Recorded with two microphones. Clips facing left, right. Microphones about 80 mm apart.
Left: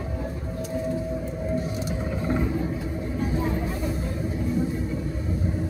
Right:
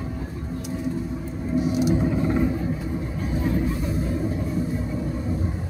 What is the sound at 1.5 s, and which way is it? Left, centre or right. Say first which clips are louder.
Vehicle: right 7 dB; centre.